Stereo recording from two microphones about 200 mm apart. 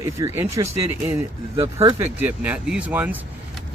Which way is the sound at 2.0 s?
10° right (ahead or behind).